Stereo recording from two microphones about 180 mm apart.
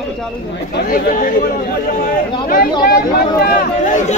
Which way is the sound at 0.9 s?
50° left (ahead or behind).